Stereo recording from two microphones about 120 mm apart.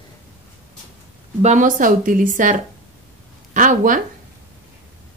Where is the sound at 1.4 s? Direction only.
90° right.